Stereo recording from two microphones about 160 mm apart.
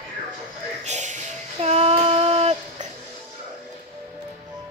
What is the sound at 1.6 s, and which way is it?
Child singing, 40° right (ahead or behind).